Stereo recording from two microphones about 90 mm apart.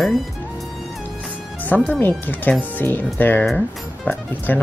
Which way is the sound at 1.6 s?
20° left (ahead or behind).